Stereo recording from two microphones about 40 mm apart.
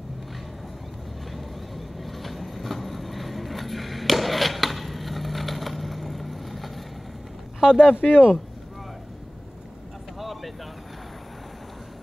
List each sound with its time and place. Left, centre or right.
2.0 s vehicle: centre
7.6 s speech: right
10.1 s vehicle: centre